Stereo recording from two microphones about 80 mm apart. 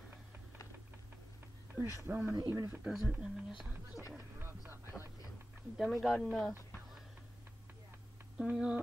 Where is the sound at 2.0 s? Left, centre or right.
Right.